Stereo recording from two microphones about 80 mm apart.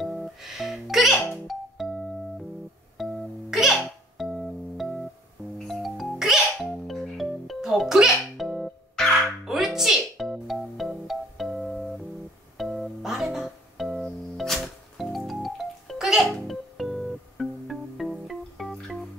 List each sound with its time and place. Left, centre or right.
0.0 s music: centre
1.1 s music: left
1.5 s music: centre
5.7 s sneeze: centre
9.4 s music: centre